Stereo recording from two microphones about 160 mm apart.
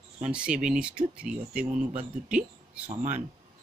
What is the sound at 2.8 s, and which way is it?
Speech, 50° right (ahead or behind).